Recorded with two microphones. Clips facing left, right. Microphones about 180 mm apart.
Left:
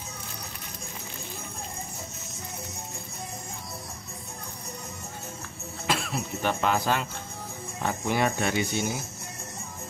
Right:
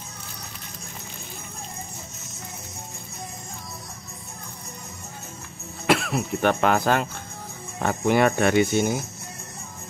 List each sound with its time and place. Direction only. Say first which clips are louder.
5.9 s speech: right 8 dB; 65° right (ahead or behind)